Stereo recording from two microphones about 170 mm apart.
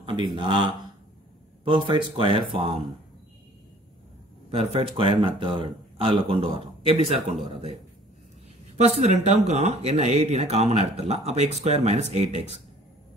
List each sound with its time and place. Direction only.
0.0 s a sound: 30° right (ahead or behind)
0.4 s speech: 30° right (ahead or behind)
4.5 s speech: 35° right (ahead or behind)
8.7 s speech: 40° right (ahead or behind)